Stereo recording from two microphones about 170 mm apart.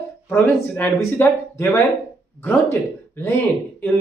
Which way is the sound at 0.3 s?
15° left (ahead or behind).